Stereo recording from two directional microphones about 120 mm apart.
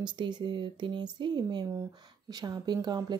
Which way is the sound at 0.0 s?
40° right (ahead or behind).